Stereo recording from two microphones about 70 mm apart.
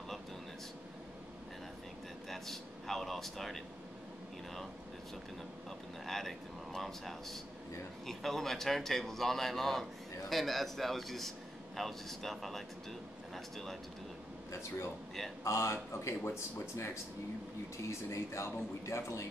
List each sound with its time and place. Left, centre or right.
2.2 s speech: centre
6.0 s a man's voice: centre
15.4 s speech: left